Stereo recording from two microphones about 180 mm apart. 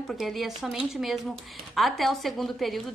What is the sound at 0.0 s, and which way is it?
A woman's voice, centre (ahead or behind).